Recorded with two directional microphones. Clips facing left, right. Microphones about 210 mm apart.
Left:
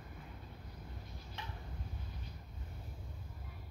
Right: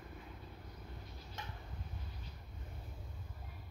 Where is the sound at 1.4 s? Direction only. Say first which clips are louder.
Even; 45° right (ahead or behind).